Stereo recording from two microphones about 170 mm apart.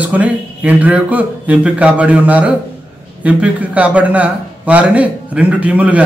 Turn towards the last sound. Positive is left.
turn(degrees=-10)  # may be behind; listen again after turning